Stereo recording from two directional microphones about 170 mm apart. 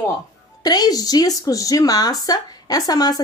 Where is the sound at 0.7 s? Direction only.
25° left (ahead or behind).